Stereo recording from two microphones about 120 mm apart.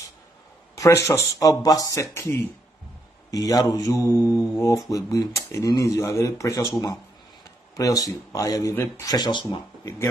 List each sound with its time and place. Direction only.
0.7 s speech: 25° left (ahead or behind); by 9.6 s 40° left (ahead or behind)